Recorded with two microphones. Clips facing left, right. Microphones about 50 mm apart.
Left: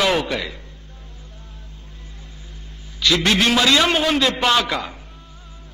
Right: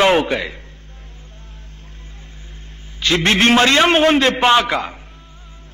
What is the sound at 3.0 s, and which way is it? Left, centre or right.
A man's voice, right.